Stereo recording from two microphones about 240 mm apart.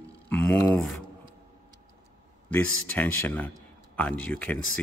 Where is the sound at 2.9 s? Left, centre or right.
Centre.